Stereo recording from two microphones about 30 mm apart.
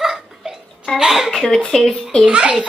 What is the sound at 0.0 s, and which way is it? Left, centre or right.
Hiccup, centre.